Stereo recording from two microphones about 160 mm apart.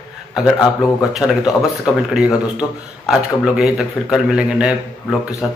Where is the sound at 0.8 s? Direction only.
5° right (ahead or behind).